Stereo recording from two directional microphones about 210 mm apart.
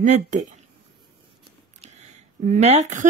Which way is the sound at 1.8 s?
35° right (ahead or behind).